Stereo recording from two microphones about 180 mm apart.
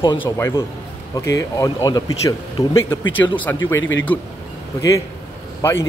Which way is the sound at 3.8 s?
90° left.